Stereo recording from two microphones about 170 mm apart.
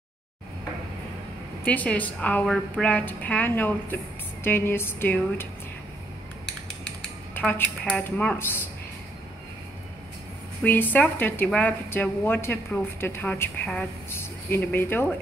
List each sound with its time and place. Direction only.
1.6 s a woman's voice: 10° left (ahead or behind)
7.3 s a woman's voice: 10° left (ahead or behind)
10.6 s a woman's voice: 10° left (ahead or behind)